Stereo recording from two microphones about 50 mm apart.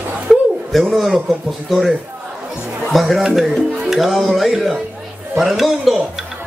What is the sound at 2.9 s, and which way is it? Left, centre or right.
A man's voice, centre.